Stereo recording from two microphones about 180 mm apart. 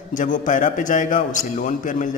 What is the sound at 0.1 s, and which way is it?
A man's voice, 45° left (ahead or behind).